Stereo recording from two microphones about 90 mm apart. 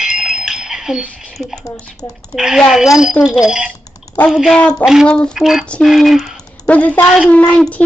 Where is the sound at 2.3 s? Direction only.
5° right (ahead or behind).